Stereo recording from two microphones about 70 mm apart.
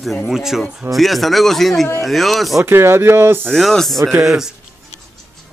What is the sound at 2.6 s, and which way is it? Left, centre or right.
Speech, right.